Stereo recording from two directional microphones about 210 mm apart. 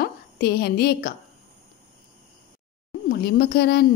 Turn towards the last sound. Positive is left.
turn(degrees=50)  # may be behind; listen again after turning